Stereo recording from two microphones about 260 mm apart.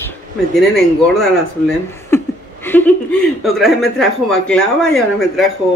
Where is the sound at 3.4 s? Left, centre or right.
Centre.